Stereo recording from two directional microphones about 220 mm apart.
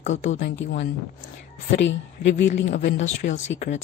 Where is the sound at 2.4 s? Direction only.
35° left (ahead or behind).